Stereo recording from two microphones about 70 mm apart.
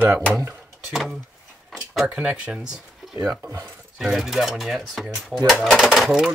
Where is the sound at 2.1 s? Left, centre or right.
Centre.